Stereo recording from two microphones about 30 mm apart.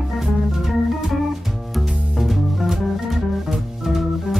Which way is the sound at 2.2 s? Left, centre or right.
Centre.